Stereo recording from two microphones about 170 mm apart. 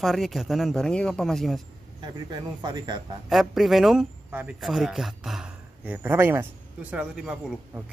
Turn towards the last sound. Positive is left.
turn(degrees=-5)  # may be behind; listen again after turning